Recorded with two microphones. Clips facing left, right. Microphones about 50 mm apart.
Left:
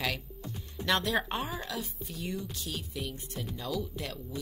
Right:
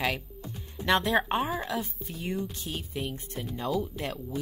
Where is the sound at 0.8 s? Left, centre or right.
Right.